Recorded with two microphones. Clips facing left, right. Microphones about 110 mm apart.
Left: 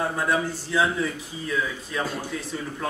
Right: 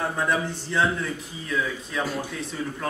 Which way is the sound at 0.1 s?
5° left (ahead or behind).